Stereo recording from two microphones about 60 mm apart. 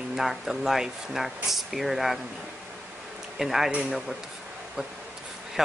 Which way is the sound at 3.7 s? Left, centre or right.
Centre.